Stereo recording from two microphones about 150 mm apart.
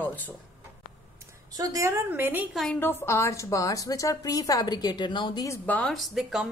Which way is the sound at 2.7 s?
15° left (ahead or behind).